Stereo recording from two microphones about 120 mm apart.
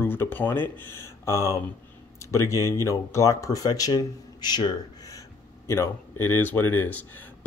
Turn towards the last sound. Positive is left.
turn(degrees=15)  # may be behind; listen again after turning